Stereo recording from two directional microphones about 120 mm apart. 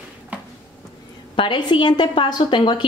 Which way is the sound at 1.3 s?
40° left (ahead or behind).